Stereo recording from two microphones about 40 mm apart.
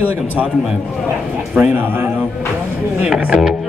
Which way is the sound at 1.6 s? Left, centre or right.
Right.